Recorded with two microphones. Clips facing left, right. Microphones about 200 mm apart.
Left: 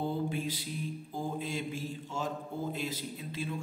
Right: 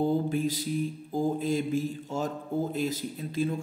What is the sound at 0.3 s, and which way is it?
Speech, 45° right (ahead or behind).